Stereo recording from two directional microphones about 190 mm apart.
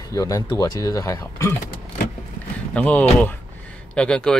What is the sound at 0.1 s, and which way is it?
Speech, 15° left (ahead or behind).